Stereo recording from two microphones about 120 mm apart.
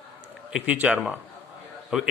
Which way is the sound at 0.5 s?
10° right (ahead or behind).